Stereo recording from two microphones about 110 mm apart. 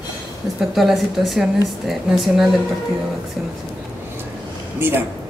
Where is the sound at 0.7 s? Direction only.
Centre (ahead or behind).